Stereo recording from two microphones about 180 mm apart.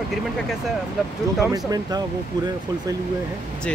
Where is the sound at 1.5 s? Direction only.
20° right (ahead or behind).